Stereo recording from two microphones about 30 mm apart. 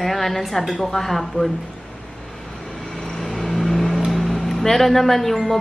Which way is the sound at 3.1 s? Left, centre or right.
Centre.